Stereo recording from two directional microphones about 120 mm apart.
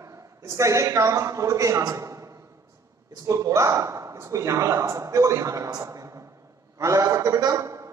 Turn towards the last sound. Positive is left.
turn(degrees=-25)  # may be behind; listen again after turning